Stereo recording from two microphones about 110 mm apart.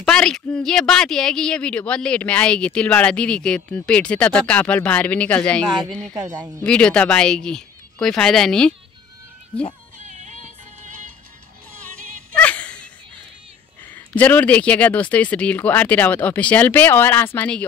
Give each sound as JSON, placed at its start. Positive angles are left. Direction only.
{"t": 0.0, "sound": "a woman's voice", "side_deg": 5}
{"t": 10.0, "sound": "music", "side_deg": -90}
{"t": 12.4, "sound": "a sound", "side_deg": 10}
{"t": 13.9, "sound": "a woman's voice", "side_deg": 15}